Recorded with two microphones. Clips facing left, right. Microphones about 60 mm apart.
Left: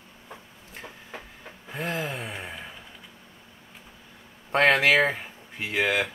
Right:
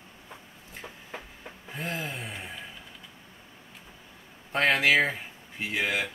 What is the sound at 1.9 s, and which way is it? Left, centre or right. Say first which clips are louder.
Gasp: left 4 dB; left.